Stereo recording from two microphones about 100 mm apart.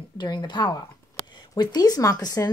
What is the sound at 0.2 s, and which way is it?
Speech, 45° left (ahead or behind).